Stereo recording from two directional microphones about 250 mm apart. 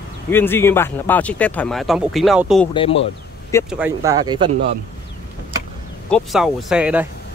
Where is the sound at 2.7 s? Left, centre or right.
Left.